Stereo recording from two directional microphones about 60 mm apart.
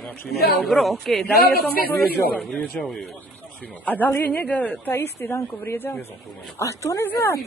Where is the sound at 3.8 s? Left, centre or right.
Left.